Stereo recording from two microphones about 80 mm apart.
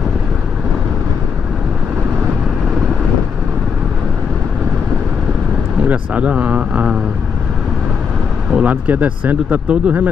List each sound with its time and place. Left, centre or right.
5.9 s speech: centre
8.5 s speech: centre